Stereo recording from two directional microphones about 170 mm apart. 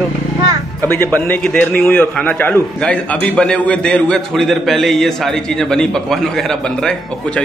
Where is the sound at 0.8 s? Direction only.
10° left (ahead or behind).